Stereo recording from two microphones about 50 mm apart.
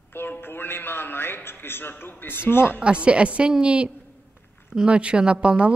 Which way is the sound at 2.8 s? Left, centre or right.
Right.